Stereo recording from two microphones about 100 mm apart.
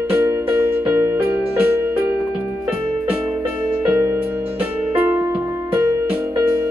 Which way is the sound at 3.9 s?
30° right (ahead or behind).